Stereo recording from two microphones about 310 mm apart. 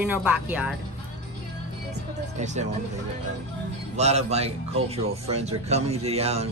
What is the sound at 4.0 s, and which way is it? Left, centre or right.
Speech, right.